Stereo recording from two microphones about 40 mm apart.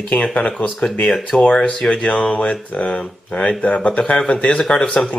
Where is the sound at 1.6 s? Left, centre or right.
Centre.